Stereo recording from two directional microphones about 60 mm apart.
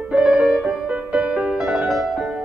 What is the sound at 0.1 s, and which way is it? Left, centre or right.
Music, centre.